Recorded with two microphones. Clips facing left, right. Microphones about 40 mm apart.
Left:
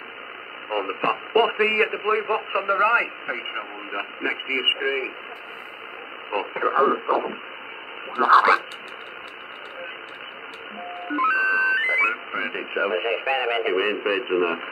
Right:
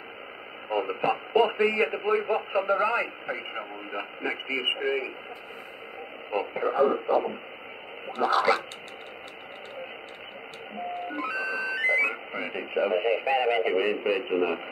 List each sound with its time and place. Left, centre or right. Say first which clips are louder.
0.7 s speech: left 2 dB; left
6.3 s speech: left 4 dB; left
11.1 s a sound: left 12 dB; left
12.3 s speech: left 5 dB; left